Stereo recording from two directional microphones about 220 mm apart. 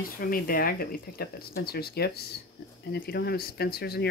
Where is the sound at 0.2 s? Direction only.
40° left (ahead or behind).